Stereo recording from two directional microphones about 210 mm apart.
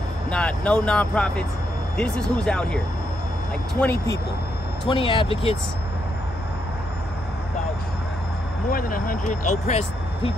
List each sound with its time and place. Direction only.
0.3 s speech: 5° left (ahead or behind)
3.8 s speech: 10° left (ahead or behind)
4.8 s speech: 25° left (ahead or behind)
8.6 s speech: 40° left (ahead or behind)